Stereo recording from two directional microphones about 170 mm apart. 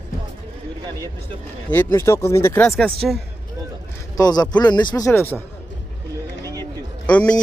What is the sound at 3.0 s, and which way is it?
Speech, centre (ahead or behind).